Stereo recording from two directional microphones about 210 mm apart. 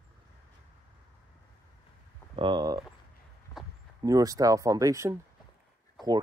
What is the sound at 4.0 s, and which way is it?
Speech, 15° right (ahead or behind).